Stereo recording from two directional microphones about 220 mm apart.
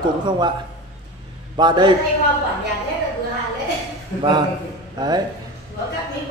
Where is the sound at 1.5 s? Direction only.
20° right (ahead or behind).